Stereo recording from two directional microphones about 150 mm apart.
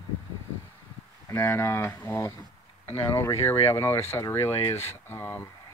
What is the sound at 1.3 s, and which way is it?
Speech, 15° left (ahead or behind).